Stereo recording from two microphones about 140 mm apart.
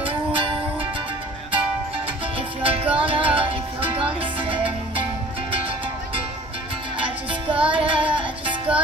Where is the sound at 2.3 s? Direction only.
40° right (ahead or behind).